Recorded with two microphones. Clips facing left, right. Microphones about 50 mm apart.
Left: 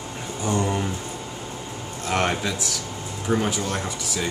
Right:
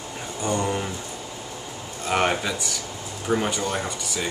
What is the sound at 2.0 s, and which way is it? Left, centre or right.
Speech, centre.